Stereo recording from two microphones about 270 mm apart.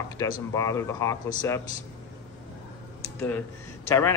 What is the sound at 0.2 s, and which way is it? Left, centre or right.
Speech, centre.